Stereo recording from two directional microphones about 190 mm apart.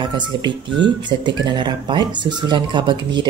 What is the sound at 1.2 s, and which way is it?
Speech, 25° right (ahead or behind).